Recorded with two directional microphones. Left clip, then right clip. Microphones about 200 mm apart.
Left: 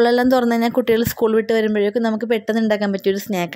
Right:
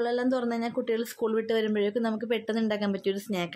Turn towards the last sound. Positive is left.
turn(degrees=30)  # may be behind; listen again after turning